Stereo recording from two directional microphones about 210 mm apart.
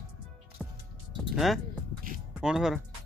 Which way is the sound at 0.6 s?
5° right (ahead or behind).